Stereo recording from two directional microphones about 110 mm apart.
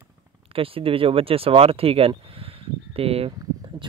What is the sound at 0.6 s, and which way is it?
Speech, 55° right (ahead or behind).